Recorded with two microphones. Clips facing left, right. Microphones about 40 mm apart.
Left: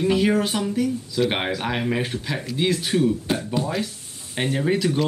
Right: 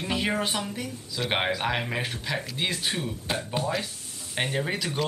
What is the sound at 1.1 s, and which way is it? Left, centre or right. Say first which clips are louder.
Speech: left 1 dB; centre.